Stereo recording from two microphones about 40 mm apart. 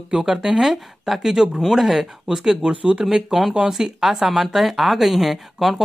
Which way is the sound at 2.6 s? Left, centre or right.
Right.